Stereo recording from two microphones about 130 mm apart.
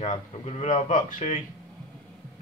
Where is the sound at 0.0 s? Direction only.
55° left (ahead or behind); by 1.4 s 80° left.